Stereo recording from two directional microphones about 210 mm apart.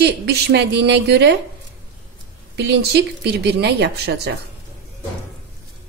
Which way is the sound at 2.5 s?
50° right (ahead or behind).